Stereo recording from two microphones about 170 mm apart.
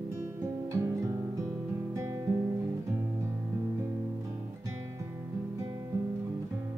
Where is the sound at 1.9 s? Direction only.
15° right (ahead or behind).